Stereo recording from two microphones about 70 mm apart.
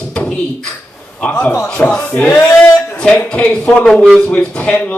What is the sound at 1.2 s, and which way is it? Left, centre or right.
Speech, centre.